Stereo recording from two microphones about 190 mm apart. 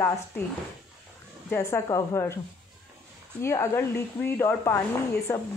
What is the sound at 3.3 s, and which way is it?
A woman's voice, 15° left (ahead or behind).